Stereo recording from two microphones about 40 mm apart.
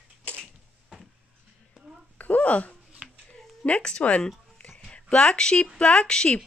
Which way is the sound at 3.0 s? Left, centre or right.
Centre.